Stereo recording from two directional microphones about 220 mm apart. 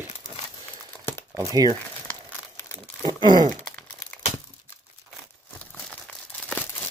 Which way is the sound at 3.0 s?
20° right (ahead or behind).